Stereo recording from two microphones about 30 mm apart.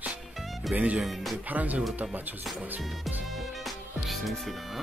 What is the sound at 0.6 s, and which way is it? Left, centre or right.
Speech, centre.